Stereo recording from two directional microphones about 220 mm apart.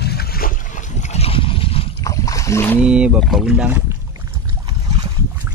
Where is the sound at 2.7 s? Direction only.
5° right (ahead or behind).